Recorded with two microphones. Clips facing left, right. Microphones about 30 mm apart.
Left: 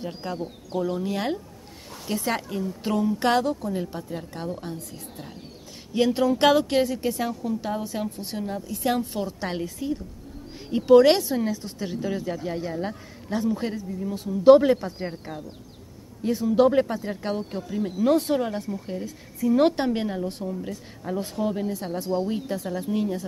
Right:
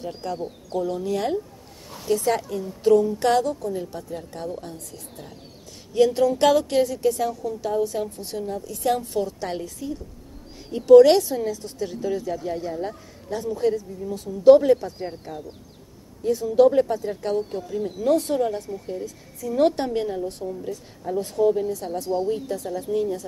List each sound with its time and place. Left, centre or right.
0.0 s speech: centre